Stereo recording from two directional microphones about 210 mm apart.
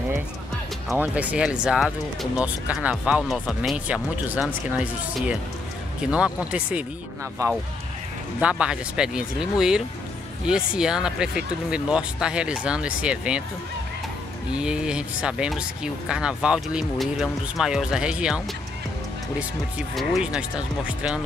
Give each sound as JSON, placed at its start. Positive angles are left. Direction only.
{"t": 0.8, "sound": "speech", "side_deg": -5}
{"t": 7.4, "sound": "speech", "side_deg": -15}
{"t": 8.4, "sound": "speech", "side_deg": -5}
{"t": 14.5, "sound": "speech", "side_deg": -5}
{"t": 20.0, "sound": "speech", "side_deg": 0}